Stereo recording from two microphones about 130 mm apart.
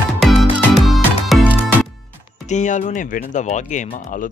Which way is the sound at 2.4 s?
70° left (ahead or behind).